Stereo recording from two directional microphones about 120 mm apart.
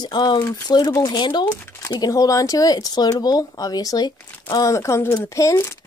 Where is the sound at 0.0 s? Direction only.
40° left (ahead or behind).